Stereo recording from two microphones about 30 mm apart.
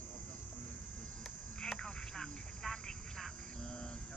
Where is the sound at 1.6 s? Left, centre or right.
Left.